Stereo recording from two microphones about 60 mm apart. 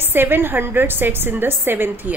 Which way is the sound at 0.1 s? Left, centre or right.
Right.